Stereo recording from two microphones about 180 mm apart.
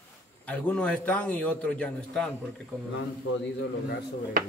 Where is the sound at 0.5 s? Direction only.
5° left (ahead or behind).